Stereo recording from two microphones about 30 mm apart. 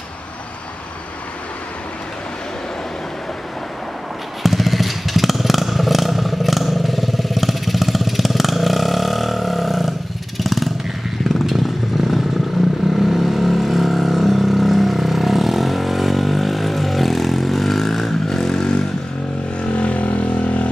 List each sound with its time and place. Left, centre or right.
4.4 s motorcycle: centre
10.4 s vehicle: centre
19.7 s vehicle: left